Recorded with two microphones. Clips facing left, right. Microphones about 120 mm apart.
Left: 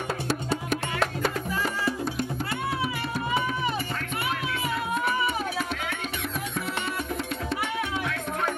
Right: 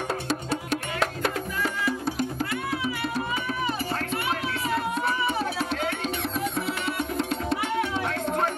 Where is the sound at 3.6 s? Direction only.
35° right (ahead or behind).